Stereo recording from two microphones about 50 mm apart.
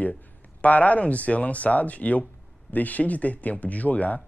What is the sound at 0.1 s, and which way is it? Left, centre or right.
Speech, left.